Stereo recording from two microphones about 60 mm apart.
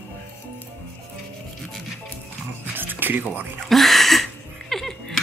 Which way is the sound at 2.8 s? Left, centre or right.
Right.